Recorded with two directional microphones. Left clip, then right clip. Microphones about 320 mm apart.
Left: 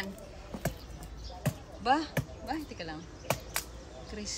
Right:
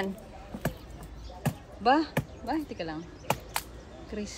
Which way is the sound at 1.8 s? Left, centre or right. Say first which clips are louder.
Right 4 dB; centre.